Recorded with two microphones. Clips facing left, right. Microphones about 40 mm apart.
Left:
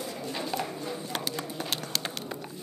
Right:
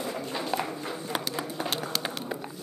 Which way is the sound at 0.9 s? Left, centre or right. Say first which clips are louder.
Right 2 dB; centre.